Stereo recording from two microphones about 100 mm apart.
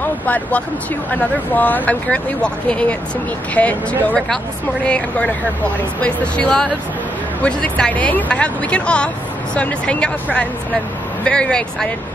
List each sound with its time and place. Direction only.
0.0 s speech: 15° left (ahead or behind)